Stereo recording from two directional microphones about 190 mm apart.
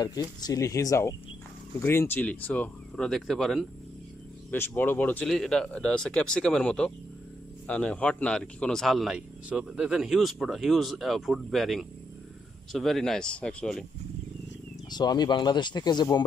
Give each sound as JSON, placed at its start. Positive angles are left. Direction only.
{"t": 0.0, "sound": "speech", "side_deg": 20}
{"t": 14.9, "sound": "speech", "side_deg": 20}